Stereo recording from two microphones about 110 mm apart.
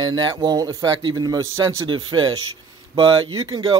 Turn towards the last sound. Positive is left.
turn(degrees=-45)  # may be behind; listen again after turning